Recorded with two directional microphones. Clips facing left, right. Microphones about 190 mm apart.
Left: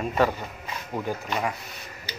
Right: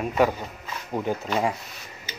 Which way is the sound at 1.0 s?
20° right (ahead or behind).